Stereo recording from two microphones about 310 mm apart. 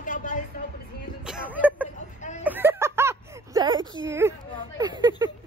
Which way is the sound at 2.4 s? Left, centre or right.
Centre.